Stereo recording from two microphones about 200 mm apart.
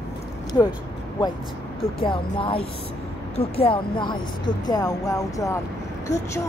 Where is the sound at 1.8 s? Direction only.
25° left (ahead or behind).